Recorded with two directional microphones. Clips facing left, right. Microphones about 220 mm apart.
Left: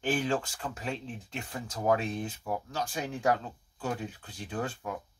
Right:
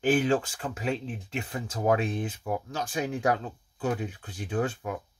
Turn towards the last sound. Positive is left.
turn(degrees=-10)  # may be behind; listen again after turning